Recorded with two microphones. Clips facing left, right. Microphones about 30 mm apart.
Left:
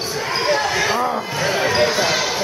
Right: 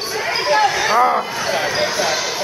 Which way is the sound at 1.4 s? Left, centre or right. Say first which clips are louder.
Left 1 dB; centre.